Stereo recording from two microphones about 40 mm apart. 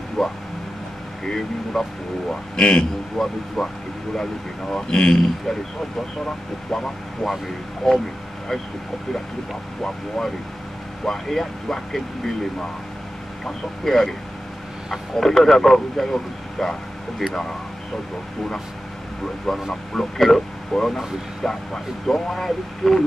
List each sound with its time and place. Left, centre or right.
0.2 s speech: centre
9.8 s speech: centre
13.5 s speech: centre
15.1 s speech: centre
19.7 s speech: centre